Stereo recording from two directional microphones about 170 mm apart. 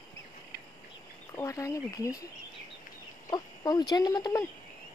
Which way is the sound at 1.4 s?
20° left (ahead or behind).